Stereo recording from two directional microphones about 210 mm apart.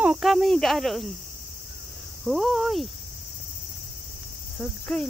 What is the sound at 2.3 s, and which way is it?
Speech, centre (ahead or behind).